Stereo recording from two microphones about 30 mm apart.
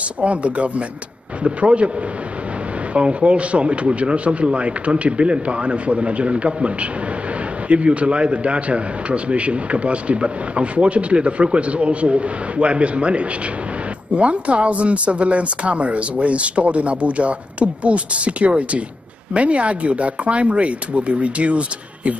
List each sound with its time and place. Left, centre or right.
0.2 s a man's voice: right
2.9 s a man's voice: right